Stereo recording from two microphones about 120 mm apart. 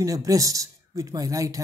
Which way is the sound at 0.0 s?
30° right (ahead or behind).